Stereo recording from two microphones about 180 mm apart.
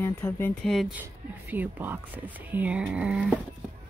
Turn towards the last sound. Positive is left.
turn(degrees=-5)  # may be behind; listen again after turning